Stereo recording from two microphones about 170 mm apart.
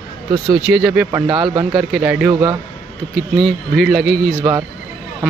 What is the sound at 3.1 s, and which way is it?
Speech, centre (ahead or behind).